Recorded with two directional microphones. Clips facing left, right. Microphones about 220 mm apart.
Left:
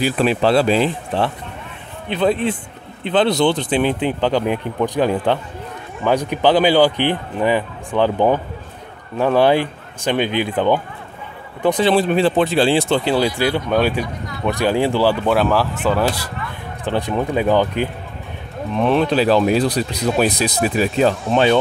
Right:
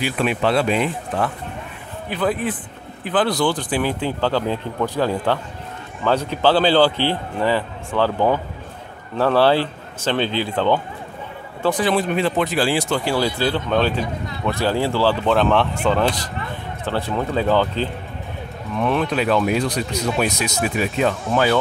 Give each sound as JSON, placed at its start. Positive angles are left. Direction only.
{"t": 0.0, "sound": "a man's voice", "side_deg": 35}
{"t": 16.8, "sound": "a man's voice", "side_deg": 15}
{"t": 18.8, "sound": "speech", "side_deg": 30}